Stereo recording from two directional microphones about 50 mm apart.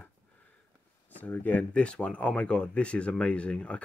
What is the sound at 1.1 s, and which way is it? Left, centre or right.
Speech, left.